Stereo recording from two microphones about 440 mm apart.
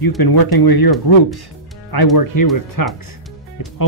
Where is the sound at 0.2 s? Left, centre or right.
Left.